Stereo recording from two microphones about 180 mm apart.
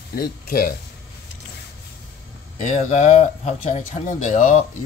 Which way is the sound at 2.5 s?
40° left (ahead or behind).